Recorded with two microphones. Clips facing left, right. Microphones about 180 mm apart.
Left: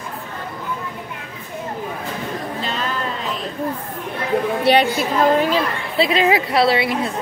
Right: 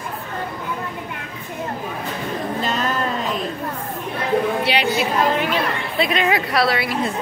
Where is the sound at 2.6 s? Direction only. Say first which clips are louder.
Right 3 dB; 45° right (ahead or behind).